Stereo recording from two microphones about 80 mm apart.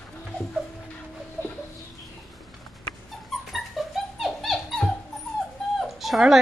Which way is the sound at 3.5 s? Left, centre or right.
Centre.